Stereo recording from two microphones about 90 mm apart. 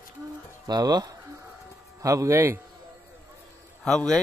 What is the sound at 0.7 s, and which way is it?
Speech, 50° right (ahead or behind).